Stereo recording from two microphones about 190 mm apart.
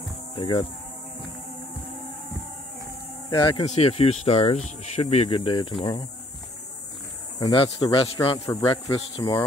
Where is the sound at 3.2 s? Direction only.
25° left (ahead or behind).